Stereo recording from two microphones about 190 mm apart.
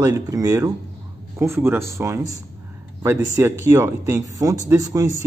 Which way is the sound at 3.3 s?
15° right (ahead or behind).